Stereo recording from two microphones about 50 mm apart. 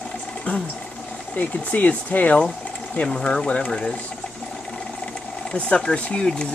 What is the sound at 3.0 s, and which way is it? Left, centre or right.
Speech, centre.